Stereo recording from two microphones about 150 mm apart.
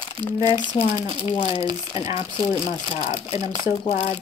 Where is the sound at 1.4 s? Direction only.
40° left (ahead or behind).